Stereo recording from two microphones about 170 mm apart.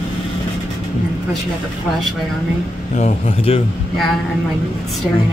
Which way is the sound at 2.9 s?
40° left (ahead or behind).